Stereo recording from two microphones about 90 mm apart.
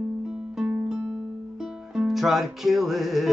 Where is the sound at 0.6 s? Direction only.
10° right (ahead or behind).